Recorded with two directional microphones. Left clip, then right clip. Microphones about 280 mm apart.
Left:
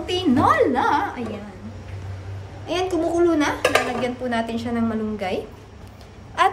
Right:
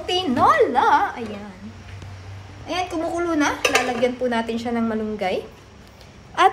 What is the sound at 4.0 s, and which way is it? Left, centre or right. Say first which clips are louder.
A woman's voice: right 3 dB; centre.